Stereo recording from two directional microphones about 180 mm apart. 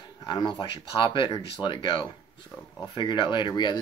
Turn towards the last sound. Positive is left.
turn(degrees=25)  # may be behind; listen again after turning